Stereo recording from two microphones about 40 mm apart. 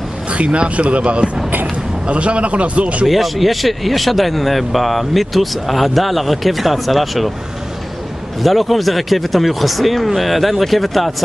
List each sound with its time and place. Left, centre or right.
0.3 s speech: right
3.1 s speech: centre
8.4 s speech: centre